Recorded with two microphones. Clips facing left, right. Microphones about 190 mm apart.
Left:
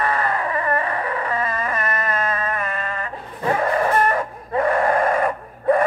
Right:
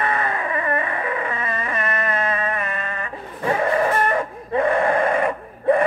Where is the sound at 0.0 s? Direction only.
20° right (ahead or behind).